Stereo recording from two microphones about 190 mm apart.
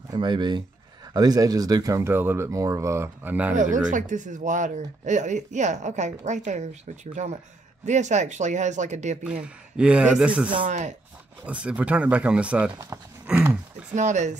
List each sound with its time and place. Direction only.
0.1 s speech: 25° right (ahead or behind); by 3.5 s 10° right (ahead or behind)
3.9 s speech: 40° right (ahead or behind)
9.2 s speech: 5° right (ahead or behind)
10.6 s speech: 40° right (ahead or behind)
11.4 s speech: 5° right (ahead or behind)
13.9 s speech: 40° right (ahead or behind)